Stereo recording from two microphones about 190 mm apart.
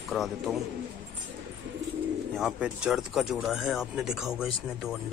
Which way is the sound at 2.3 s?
5° right (ahead or behind).